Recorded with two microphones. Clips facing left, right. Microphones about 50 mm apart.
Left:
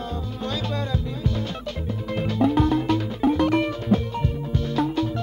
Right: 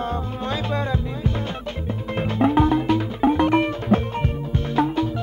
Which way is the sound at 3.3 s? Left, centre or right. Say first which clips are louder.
Right 2 dB; right.